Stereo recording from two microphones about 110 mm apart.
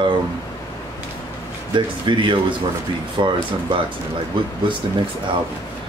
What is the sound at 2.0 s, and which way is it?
Speech, 45° right (ahead or behind).